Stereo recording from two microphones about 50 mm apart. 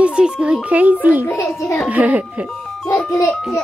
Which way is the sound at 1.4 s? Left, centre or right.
Left.